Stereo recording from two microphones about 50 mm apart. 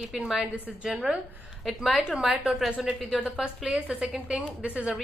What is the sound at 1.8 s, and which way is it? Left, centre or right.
Speech, centre.